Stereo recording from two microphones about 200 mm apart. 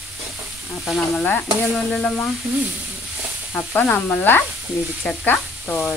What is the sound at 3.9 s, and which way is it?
Speech, 10° left (ahead or behind).